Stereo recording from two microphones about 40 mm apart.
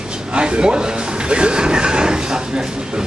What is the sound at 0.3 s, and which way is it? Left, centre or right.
A man's voice, right.